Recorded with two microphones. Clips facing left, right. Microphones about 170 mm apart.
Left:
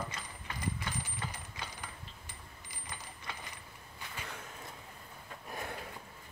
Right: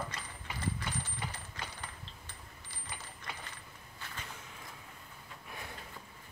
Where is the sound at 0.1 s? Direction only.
10° left (ahead or behind).